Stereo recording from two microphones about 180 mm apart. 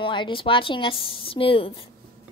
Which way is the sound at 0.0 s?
25° left (ahead or behind).